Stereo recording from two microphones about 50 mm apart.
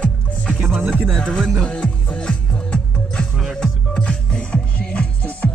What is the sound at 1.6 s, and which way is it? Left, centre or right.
Music, left.